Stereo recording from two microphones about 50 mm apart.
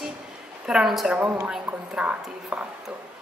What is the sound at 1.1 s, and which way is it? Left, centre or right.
A woman's voice, right.